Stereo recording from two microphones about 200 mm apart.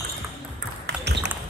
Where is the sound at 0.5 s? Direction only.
60° right (ahead or behind).